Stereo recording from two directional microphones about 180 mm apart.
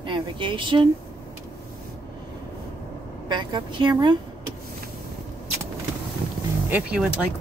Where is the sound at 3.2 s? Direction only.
25° right (ahead or behind).